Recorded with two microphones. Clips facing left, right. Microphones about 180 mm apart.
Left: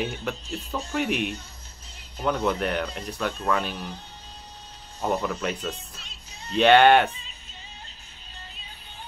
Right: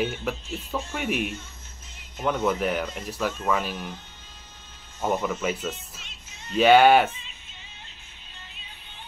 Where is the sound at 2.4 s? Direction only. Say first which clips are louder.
Right 1 dB; 5° right (ahead or behind).